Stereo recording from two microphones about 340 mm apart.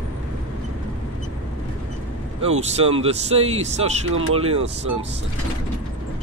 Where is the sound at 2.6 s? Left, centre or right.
Centre.